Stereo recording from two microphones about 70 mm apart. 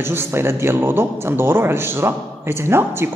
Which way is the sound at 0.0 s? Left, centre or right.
Right.